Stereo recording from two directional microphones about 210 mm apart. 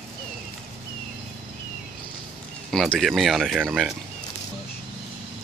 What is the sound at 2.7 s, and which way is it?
Speech, centre (ahead or behind).